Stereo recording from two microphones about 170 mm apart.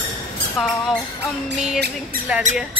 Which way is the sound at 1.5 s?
75° right (ahead or behind).